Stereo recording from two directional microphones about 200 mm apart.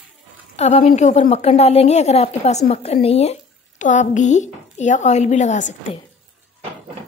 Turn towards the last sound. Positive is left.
turn(degrees=35)  # may be behind; listen again after turning